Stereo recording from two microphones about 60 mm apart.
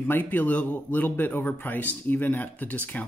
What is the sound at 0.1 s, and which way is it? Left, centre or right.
Speech, left.